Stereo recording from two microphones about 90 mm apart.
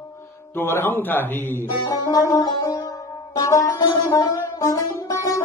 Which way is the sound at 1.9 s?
40° left (ahead or behind).